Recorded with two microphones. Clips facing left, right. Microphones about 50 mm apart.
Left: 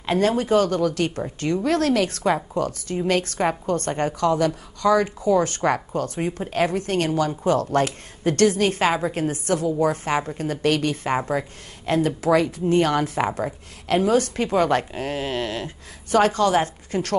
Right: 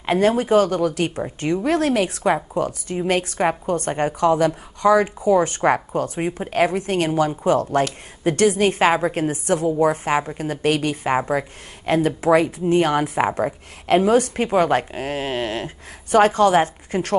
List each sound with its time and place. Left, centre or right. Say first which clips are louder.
0.0 s a woman's voice: right 3 dB; right
11.8 s speech: right 2 dB; right
13.8 s a woman's voice: right 3 dB; right